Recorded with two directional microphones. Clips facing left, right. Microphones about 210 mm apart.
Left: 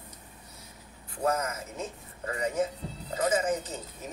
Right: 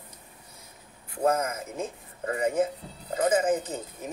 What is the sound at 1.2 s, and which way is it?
Speech, 50° right (ahead or behind).